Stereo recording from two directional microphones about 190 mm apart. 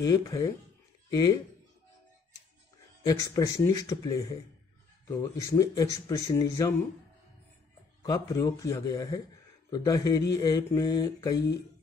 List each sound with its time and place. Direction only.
0.0 s mantra: 20° left (ahead or behind)
3.1 s speech: 20° left (ahead or behind)
8.0 s mantra: 20° left (ahead or behind)